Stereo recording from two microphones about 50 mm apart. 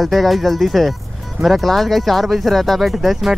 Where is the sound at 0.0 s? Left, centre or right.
Centre.